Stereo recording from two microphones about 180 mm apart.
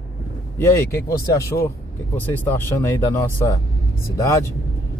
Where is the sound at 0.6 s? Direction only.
20° left (ahead or behind).